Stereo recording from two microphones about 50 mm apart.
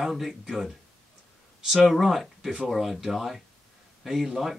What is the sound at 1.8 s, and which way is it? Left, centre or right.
Speech, centre.